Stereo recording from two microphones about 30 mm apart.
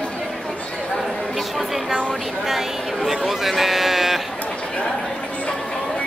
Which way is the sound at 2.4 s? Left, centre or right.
Centre.